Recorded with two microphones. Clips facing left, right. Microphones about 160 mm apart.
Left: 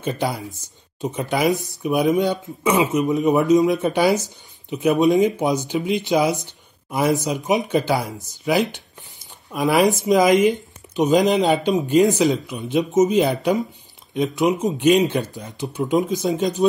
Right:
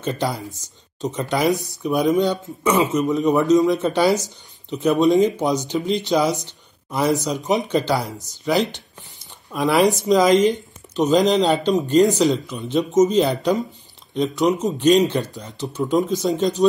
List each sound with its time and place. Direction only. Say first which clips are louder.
0.0 s speech: even; 10° left (ahead or behind)
2.8 s speech: left 1 dB; 5° left (ahead or behind)